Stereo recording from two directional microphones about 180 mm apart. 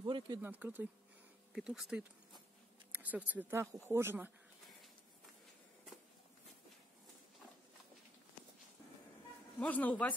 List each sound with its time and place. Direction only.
0.0 s a sound: 20° right (ahead or behind)
0.4 s speech: 10° right (ahead or behind)
9.6 s a man's voice: 10° left (ahead or behind)